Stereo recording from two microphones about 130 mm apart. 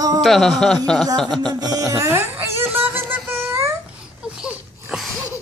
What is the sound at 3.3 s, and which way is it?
Babbling, 15° right (ahead or behind).